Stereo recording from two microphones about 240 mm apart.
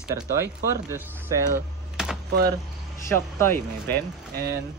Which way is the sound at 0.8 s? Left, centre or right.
Centre.